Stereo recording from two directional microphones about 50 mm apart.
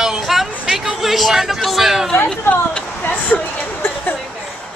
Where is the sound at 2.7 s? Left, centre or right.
Left.